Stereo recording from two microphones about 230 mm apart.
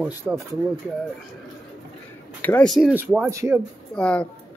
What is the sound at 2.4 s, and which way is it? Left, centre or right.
Speech, centre.